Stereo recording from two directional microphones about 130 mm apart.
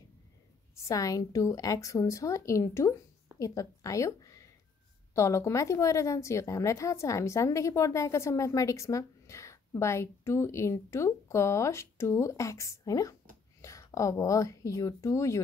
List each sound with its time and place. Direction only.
0.8 s a woman's voice: 25° left (ahead or behind)